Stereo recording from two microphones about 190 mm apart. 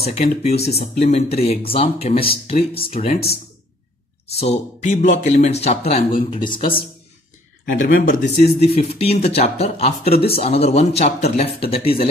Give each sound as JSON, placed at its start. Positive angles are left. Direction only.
{"t": 0.1, "sound": "speech", "side_deg": 35}
{"t": 4.8, "sound": "speech", "side_deg": 40}
{"t": 7.7, "sound": "speech", "side_deg": 45}
{"t": 10.0, "sound": "speech", "side_deg": 55}
{"t": 10.3, "sound": "speech", "side_deg": 30}